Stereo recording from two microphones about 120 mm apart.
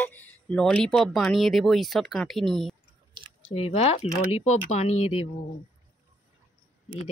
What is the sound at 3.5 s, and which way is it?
Speech, 50° left (ahead or behind).